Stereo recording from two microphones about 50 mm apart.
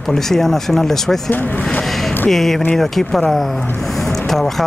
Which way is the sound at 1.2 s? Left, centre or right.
Left.